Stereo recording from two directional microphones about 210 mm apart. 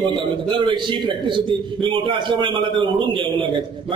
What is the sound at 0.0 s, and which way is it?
A man's voice, 20° right (ahead or behind).